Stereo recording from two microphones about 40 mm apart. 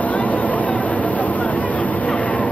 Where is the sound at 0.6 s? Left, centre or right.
Centre.